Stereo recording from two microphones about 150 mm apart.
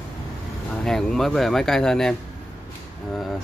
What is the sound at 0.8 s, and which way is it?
Speech, 5° left (ahead or behind).